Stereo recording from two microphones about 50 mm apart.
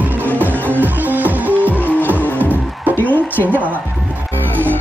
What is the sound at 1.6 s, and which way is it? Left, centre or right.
Music, left.